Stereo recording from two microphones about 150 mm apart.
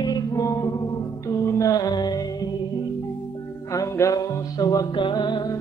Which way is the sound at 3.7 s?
20° left (ahead or behind).